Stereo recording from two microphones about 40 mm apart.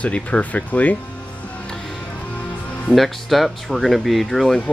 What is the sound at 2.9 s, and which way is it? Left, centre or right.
Speech, centre.